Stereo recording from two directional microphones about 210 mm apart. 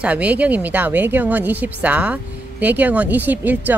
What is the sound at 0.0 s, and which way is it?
Speech, 5° right (ahead or behind).